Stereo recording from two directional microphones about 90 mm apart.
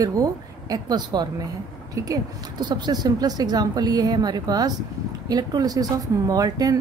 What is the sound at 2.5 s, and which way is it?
Speech, 55° right (ahead or behind).